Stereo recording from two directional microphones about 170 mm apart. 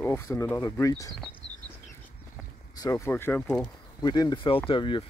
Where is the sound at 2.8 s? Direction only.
15° left (ahead or behind).